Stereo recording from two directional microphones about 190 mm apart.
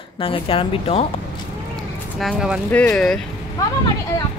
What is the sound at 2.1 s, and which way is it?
A woman's voice, centre (ahead or behind).